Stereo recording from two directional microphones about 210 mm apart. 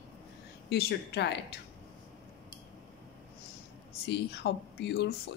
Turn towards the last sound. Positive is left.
turn(degrees=55)  # may be behind; listen again after turning